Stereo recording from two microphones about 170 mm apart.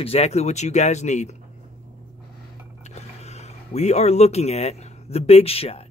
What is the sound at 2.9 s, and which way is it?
Speech, 40° left (ahead or behind).